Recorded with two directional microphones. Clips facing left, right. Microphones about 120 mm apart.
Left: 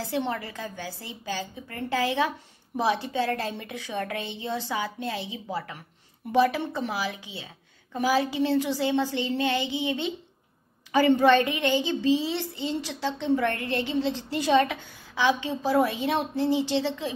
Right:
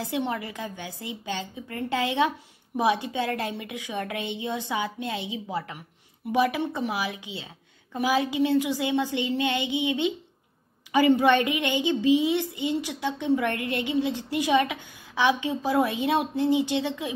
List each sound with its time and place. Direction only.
0.0 s a woman's voice: 20° right (ahead or behind)